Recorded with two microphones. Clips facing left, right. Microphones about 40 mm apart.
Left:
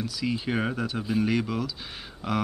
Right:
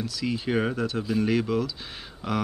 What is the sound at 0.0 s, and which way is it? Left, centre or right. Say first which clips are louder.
Speech: even; centre.